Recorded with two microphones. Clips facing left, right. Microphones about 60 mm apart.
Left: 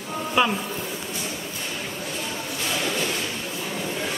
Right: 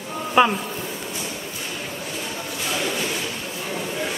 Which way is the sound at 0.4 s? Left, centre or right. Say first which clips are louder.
Right 5 dB; centre.